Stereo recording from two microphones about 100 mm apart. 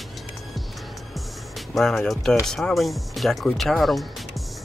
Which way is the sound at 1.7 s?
5° left (ahead or behind).